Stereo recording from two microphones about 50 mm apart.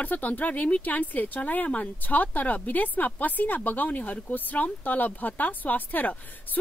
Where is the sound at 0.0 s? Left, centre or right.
Left.